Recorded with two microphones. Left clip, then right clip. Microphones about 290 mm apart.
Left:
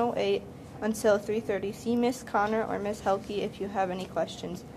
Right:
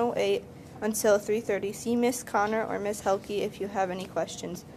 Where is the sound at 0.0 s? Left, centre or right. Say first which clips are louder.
Right 1 dB; right.